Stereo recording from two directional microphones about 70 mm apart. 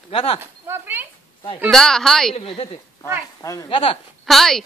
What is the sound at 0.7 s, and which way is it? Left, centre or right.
Speech, right.